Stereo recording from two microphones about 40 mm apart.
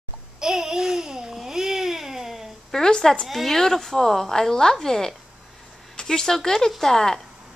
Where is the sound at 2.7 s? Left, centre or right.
Centre.